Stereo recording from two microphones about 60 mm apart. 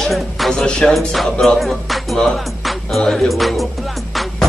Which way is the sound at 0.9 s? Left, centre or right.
Centre.